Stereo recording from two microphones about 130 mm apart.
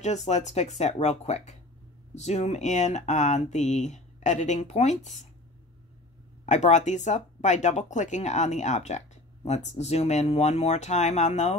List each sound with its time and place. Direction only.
0.0 s speech: 60° left (ahead or behind)
6.4 s speech: 65° left (ahead or behind)